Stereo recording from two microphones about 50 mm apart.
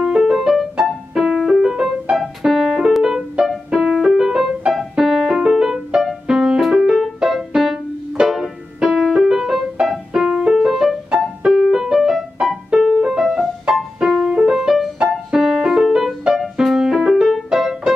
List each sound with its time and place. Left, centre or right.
0.0 s music: centre
2.1 s piano: centre
2.9 s music: centre
4.7 s keyboard: centre
5.9 s music: centre
11.7 s keyboard: centre
13.7 s piano: centre
14.0 s music: centre